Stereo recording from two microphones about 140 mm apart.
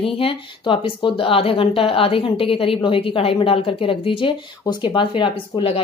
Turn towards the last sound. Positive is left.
turn(degrees=35)  # may be behind; listen again after turning